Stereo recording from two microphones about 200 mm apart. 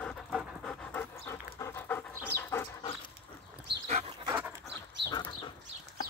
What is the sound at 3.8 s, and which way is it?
Dog, 30° right (ahead or behind).